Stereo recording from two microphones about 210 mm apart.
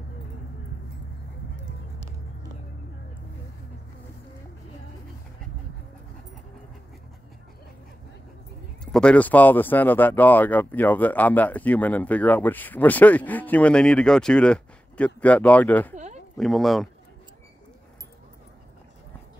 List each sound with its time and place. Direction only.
8.9 s speech: 5° left (ahead or behind)
15.9 s a sound: 35° right (ahead or behind)
16.3 s speech: centre (ahead or behind)